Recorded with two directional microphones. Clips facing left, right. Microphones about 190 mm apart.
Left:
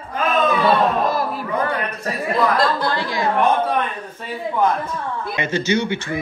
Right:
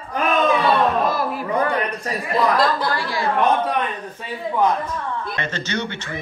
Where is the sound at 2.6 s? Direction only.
25° left (ahead or behind).